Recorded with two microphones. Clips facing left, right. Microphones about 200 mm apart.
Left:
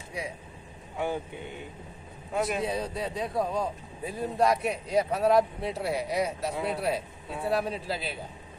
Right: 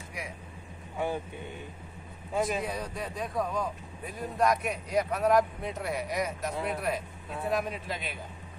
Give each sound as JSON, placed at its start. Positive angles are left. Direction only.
{"t": 0.9, "sound": "speech", "side_deg": 15}
{"t": 2.3, "sound": "a man's voice", "side_deg": 5}
{"t": 2.6, "sound": "a man's voice", "side_deg": 30}